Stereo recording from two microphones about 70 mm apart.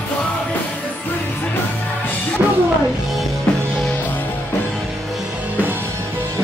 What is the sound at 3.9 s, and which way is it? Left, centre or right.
Music, left.